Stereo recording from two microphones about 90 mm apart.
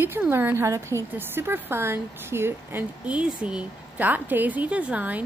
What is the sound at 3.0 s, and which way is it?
A woman's voice, 15° right (ahead or behind).